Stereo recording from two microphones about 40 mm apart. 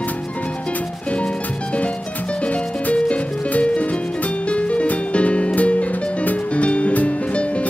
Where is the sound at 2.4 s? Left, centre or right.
Left.